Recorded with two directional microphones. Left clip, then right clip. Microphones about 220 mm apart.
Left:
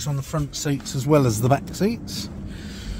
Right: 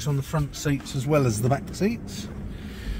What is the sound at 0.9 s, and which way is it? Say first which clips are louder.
Speech: left 5 dB; 40° left (ahead or behind).